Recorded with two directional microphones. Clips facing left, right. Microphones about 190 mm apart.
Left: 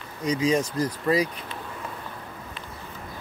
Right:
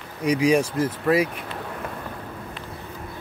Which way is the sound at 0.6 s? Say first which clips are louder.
Right 3 dB; 25° right (ahead or behind).